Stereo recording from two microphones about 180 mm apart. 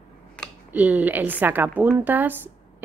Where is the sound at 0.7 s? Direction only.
10° right (ahead or behind).